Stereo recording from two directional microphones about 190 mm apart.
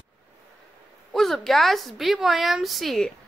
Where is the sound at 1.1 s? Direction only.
Centre (ahead or behind).